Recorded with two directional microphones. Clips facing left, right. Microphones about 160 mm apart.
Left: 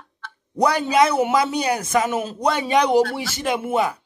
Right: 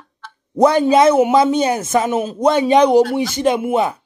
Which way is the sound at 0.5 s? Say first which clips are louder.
Right 6 dB; 25° right (ahead or behind).